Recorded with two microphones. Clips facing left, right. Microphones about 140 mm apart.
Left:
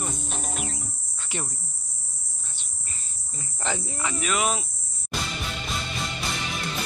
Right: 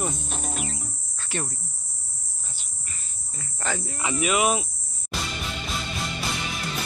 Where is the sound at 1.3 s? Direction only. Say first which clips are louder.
Right 3 dB; 15° left (ahead or behind).